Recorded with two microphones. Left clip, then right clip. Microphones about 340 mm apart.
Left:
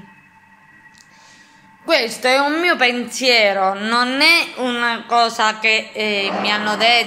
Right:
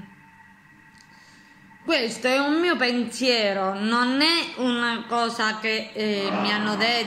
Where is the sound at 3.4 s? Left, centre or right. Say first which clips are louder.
Left 8 dB; left.